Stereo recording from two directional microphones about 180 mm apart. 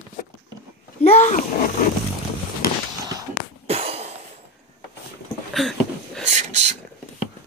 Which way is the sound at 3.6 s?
35° right (ahead or behind).